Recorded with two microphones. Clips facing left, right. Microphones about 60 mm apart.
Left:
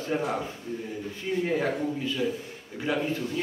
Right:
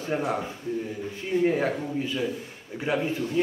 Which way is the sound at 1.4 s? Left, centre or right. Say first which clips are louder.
Right 2 dB; centre.